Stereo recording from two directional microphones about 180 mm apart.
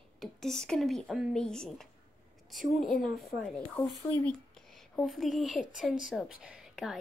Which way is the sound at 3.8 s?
10° left (ahead or behind).